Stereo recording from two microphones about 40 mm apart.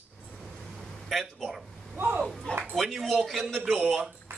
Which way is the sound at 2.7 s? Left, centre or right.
Centre.